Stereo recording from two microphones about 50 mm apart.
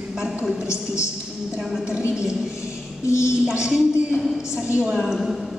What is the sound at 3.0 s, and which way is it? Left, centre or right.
Speech, left.